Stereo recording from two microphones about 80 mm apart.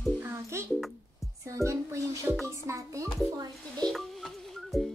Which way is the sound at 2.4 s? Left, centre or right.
Right.